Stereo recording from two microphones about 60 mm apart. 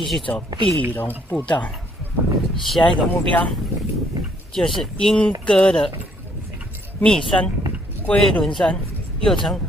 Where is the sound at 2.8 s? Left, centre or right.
Centre.